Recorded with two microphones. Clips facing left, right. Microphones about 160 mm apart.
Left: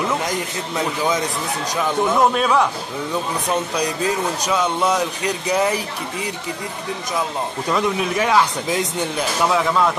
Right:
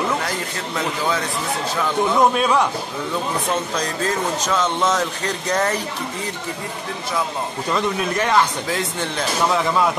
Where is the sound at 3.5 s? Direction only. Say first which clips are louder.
Left 5 dB; 15° left (ahead or behind).